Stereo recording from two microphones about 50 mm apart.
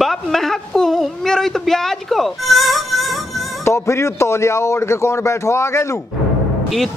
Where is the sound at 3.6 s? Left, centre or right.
Left.